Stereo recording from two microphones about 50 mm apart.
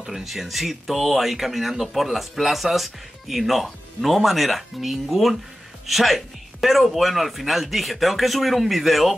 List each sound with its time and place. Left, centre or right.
0.0 s speech: centre